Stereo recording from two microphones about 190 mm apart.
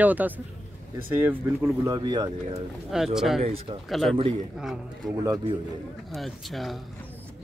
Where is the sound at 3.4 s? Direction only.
30° right (ahead or behind).